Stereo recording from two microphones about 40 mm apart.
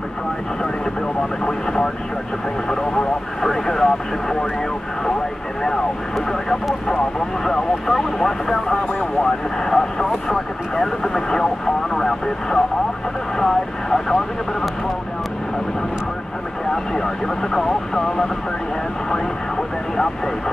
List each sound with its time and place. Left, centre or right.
1.4 s speech: left
3.4 s speech: centre
7.4 s speech: centre
16.7 s speech: centre